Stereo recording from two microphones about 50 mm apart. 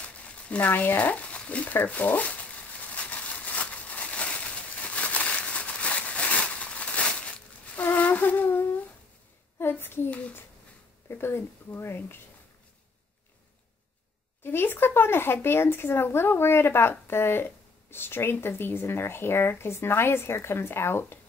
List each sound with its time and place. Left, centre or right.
0.0 s crumpling: left
1.2 s a sound: left
1.7 s speech: left
2.9 s a sound: left
11.1 s speech: left
14.4 s speech: left